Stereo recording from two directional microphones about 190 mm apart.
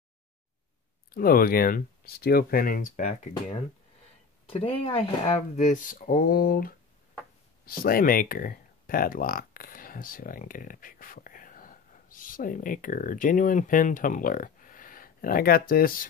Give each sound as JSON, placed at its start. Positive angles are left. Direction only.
{"t": 1.1, "sound": "speech", "side_deg": 50}
{"t": 4.5, "sound": "speech", "side_deg": 30}